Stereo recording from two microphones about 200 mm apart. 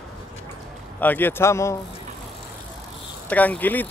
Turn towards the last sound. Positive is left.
turn(degrees=10)  # may be behind; listen again after turning